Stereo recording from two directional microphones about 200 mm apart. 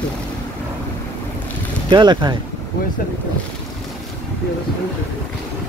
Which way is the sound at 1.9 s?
20° right (ahead or behind).